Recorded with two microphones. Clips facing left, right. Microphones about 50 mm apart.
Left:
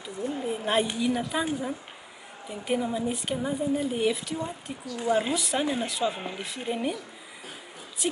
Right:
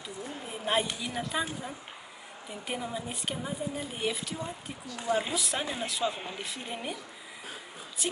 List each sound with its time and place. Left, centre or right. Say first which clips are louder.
0.5 s a woman's voice: left 3 dB; centre
8.0 s speech: left 4 dB; centre